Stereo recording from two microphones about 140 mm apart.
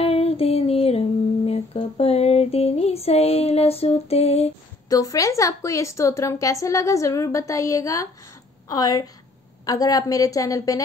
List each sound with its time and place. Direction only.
0.0 s music: 45° left (ahead or behind)
4.8 s a woman's voice: 25° left (ahead or behind)